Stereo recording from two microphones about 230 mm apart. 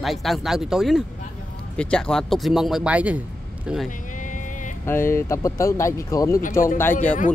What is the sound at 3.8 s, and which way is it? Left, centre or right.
Vehicle, left.